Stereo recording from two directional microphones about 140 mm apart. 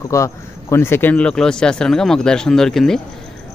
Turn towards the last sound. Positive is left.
turn(degrees=5)  # may be behind; listen again after turning